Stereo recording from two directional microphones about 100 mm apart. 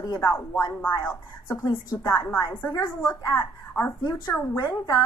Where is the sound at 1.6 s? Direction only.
40° left (ahead or behind).